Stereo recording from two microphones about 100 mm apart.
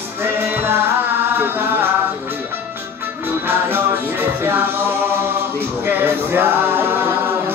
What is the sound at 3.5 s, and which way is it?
Music, 20° right (ahead or behind).